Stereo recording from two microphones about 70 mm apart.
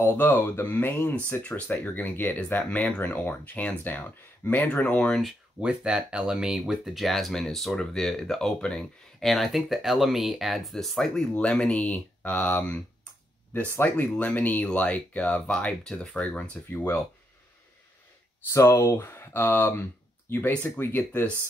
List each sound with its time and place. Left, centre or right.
0.0 s speech: left
1.4 s speech: centre
5.6 s speech: centre
11.3 s speech: centre
18.5 s speech: left